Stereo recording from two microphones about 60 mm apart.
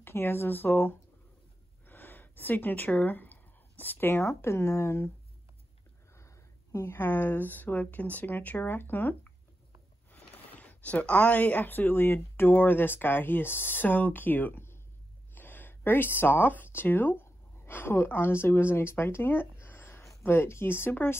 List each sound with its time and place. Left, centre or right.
0.0 s speech: left
6.1 s speech: left